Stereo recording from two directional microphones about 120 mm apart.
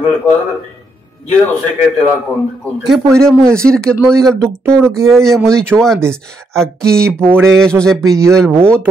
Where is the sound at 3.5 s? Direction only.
5° left (ahead or behind).